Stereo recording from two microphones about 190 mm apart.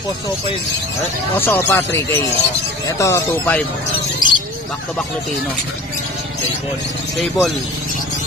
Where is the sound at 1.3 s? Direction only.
10° left (ahead or behind).